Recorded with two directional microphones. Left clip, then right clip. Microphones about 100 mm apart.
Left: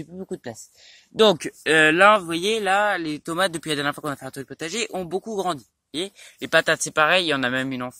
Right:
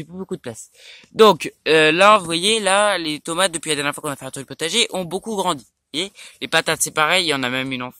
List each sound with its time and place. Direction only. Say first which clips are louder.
0.3 s speech: right 4 dB; 55° right (ahead or behind)
2.0 s speech: right 3 dB; 35° right (ahead or behind)
2.2 s speech: right 4 dB; 55° right (ahead or behind)
3.3 s speech: right 3 dB; 15° right (ahead or behind); by 5.6 s 60° right (ahead or behind)
5.9 s speech: right 4 dB; 25° right (ahead or behind)
6.6 s speech: right 1 dB; 10° right (ahead or behind)